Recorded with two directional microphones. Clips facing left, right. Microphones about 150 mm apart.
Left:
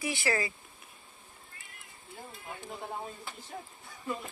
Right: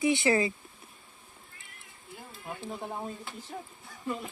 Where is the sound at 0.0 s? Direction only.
20° right (ahead or behind).